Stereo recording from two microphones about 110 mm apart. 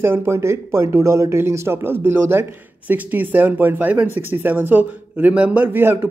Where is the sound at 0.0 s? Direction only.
20° right (ahead or behind).